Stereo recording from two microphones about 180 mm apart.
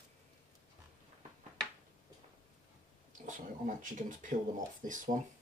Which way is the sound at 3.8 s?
45° right (ahead or behind).